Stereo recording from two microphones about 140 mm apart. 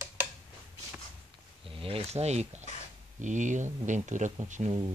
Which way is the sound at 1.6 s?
40° right (ahead or behind).